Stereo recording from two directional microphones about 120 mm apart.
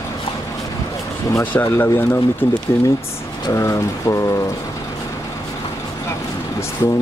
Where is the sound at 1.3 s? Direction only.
15° left (ahead or behind).